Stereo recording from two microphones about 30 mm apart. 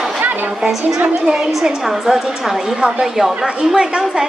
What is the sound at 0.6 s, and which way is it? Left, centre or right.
A woman's voice, centre.